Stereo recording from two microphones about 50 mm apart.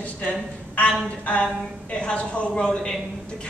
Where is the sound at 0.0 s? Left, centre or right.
Left.